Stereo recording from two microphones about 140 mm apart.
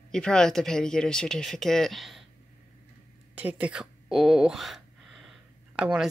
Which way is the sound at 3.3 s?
10° right (ahead or behind).